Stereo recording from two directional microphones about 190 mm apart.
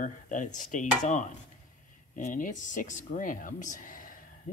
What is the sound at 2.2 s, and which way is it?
Speech, 40° left (ahead or behind).